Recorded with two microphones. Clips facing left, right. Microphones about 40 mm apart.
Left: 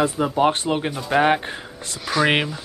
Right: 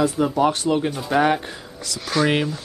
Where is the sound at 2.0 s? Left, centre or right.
Centre.